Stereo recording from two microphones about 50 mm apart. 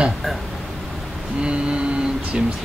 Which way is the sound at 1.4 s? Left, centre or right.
Right.